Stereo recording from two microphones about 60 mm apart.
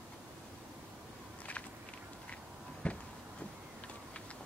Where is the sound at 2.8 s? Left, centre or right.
Left.